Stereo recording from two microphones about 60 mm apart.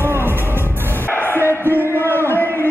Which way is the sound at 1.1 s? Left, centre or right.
Left.